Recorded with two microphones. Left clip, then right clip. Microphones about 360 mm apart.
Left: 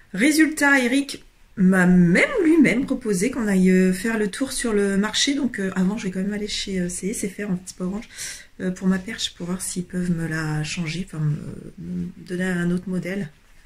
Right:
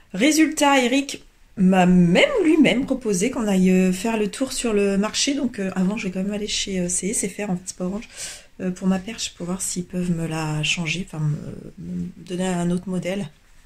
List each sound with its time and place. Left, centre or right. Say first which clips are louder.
0.1 s speech: even; centre
12.3 s speech: right 1 dB; centre